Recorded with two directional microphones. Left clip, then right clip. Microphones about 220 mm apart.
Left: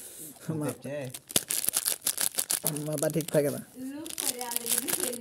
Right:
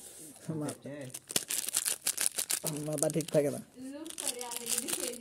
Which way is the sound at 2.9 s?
Centre (ahead or behind).